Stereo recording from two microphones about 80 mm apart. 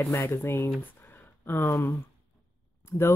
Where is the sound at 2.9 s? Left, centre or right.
Left.